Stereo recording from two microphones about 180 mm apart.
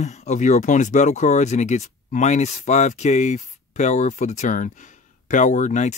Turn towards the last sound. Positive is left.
turn(degrees=40)  # may be behind; listen again after turning